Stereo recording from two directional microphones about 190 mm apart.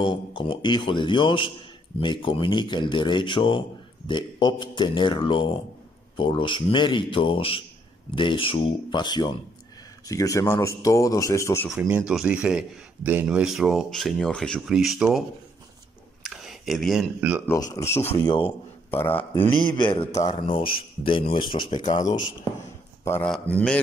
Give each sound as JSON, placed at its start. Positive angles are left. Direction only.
{"t": 0.0, "sound": "a man's voice", "side_deg": 25}
{"t": 11.7, "sound": "speech", "side_deg": -5}
{"t": 16.2, "sound": "a sound", "side_deg": 0}
{"t": 17.5, "sound": "a man's voice", "side_deg": 15}
{"t": 19.6, "sound": "speech", "side_deg": 25}
{"t": 20.2, "sound": "speech", "side_deg": 35}
{"t": 23.0, "sound": "a man's voice", "side_deg": 10}